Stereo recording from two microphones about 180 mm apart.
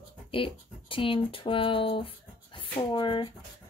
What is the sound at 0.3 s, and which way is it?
Speech, 30° left (ahead or behind).